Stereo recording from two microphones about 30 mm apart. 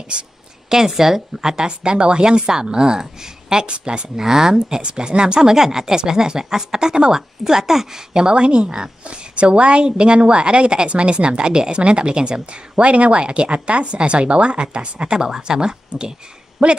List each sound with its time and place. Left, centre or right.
0.7 s speech: centre
3.6 s speech: right
4.2 s speech: centre
4.6 s speech: right
5.6 s speech: centre
8.2 s speech: right
12.7 s speech: right
16.6 s speech: right